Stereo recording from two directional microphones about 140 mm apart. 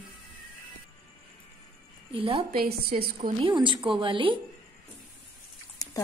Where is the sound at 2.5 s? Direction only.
90° right.